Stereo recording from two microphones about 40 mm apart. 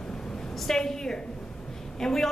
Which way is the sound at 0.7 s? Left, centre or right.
Centre.